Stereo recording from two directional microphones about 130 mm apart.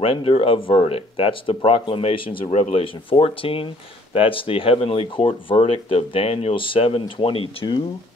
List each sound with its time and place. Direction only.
0.0 s speech: 45° left (ahead or behind)